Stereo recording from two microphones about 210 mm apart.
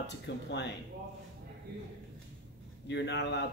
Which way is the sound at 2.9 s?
55° left (ahead or behind).